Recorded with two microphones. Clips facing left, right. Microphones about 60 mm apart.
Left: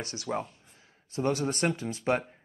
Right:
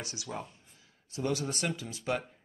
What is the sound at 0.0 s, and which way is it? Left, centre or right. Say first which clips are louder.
Speech: left 6 dB; left.